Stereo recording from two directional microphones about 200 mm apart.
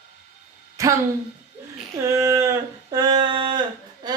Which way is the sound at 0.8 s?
15° right (ahead or behind).